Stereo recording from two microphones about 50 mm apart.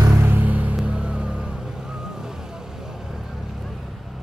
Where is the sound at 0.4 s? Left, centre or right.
Right.